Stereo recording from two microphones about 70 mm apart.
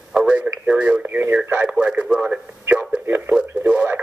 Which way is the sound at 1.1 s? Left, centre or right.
Right.